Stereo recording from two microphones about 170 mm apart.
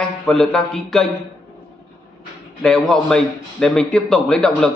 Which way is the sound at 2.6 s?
5° left (ahead or behind).